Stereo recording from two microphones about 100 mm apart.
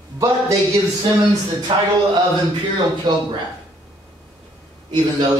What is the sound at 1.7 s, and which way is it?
Speech, 60° right (ahead or behind).